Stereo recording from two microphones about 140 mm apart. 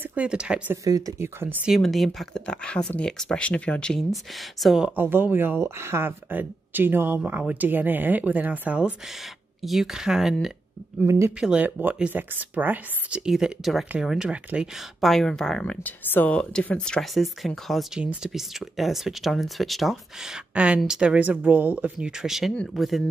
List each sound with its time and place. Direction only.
0.0 s speech: 10° right (ahead or behind)
0.8 s speech: 25° right (ahead or behind)
1.7 s speech: centre (ahead or behind)
11.0 s speech: 20° right (ahead or behind)
11.3 s speech: 10° right (ahead or behind)